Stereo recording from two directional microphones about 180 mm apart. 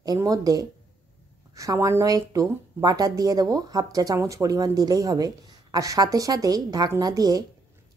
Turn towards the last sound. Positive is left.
turn(degrees=-20)  # may be behind; listen again after turning